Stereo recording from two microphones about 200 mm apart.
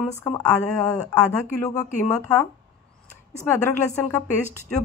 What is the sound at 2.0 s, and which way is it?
Speech, 15° left (ahead or behind).